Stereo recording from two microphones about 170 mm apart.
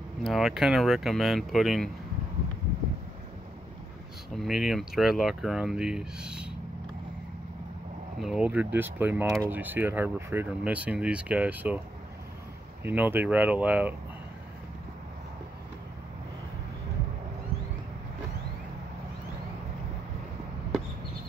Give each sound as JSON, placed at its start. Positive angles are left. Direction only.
{"t": 0.2, "sound": "speech", "side_deg": 0}
{"t": 4.4, "sound": "speech", "side_deg": 0}
{"t": 8.2, "sound": "speech", "side_deg": -5}
{"t": 12.8, "sound": "speech", "side_deg": -10}